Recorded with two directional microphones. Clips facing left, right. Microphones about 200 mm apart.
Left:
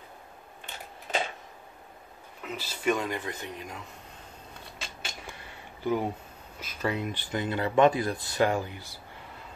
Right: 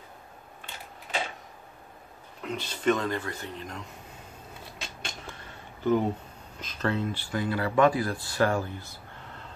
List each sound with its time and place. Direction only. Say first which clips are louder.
2.4 s speech: right 3 dB; 5° left (ahead or behind)
4.6 s cat: right 1 dB; centre (ahead or behind)
5.9 s speech: right 4 dB; 10° left (ahead or behind)